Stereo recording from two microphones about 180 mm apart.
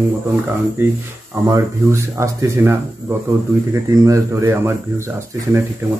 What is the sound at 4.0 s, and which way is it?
Speech, 15° right (ahead or behind).